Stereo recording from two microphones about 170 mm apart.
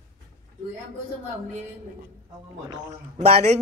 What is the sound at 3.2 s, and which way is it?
Speech, 40° right (ahead or behind).